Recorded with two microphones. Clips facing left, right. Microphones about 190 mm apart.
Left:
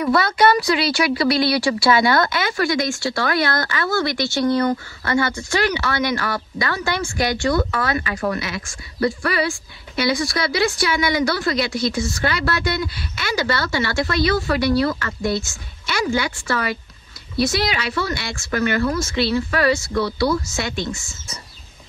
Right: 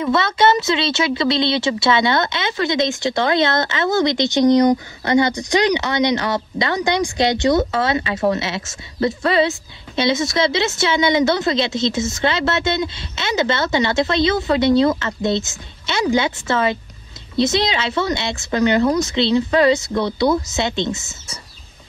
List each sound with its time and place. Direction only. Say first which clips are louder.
0.0 s a woman's voice: even; 25° right (ahead or behind)